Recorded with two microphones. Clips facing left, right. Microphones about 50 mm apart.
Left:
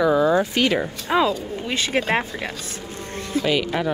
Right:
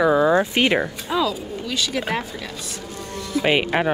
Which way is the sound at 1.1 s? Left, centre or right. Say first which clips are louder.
Left 6 dB; left.